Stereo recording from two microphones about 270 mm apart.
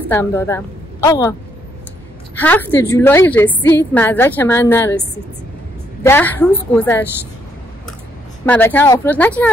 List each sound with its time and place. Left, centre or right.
0.1 s a woman's voice: centre
2.4 s a woman's voice: centre
6.0 s a woman's voice: centre
8.5 s a woman's voice: centre